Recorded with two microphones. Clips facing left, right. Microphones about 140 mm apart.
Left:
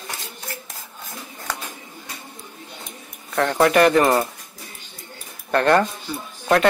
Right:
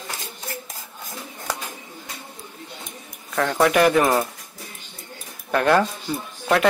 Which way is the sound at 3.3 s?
Centre (ahead or behind).